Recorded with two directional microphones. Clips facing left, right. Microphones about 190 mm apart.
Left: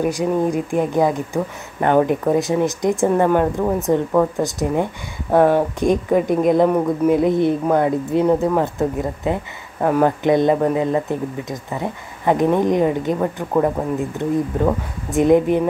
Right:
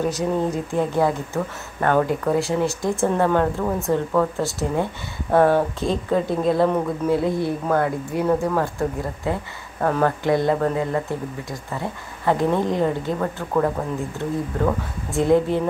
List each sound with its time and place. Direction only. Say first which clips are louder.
0.0 s speech: left 3 dB; 15° left (ahead or behind)